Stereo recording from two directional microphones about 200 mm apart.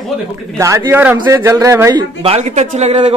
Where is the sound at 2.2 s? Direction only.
30° right (ahead or behind).